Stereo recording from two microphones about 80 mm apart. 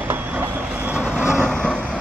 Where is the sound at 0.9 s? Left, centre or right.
Left.